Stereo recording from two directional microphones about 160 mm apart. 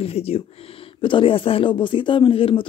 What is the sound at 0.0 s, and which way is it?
Speech, 40° left (ahead or behind).